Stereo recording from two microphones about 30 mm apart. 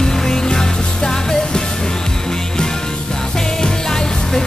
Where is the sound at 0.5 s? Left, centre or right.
Left.